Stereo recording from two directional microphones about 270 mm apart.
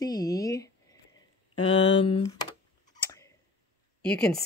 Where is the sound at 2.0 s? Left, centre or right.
Centre.